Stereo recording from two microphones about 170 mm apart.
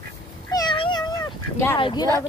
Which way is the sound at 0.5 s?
25° left (ahead or behind).